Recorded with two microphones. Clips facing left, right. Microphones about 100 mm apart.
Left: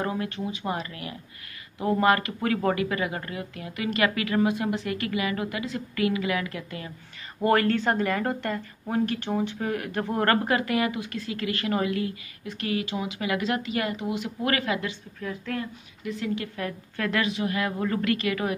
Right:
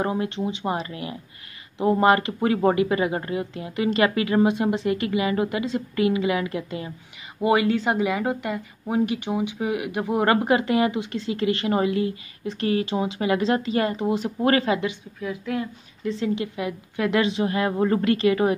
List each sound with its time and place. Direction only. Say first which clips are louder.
0.0 s a woman's voice: right 4 dB; 25° right (ahead or behind)
7.4 s a woman's voice: right 2 dB; 10° right (ahead or behind)
15.1 s speech: right 4 dB; 10° right (ahead or behind)
16.0 s a woman's voice: right 5 dB; 30° right (ahead or behind)
16.5 s a woman's voice: right 4 dB; 15° right (ahead or behind)